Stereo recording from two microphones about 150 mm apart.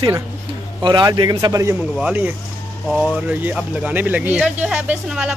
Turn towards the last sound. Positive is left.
turn(degrees=-5)  # may be behind; listen again after turning